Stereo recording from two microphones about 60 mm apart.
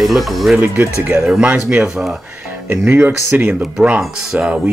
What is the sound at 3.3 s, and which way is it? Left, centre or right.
Speech, right.